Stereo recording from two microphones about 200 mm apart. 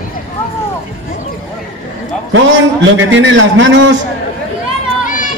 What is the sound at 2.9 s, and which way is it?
A man's voice, 70° right (ahead or behind).